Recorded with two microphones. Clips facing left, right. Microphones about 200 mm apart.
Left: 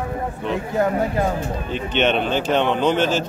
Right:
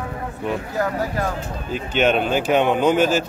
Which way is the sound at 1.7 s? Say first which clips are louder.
Right 1 dB; 5° right (ahead or behind).